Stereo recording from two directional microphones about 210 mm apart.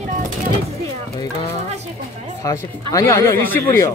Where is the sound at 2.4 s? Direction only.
15° left (ahead or behind).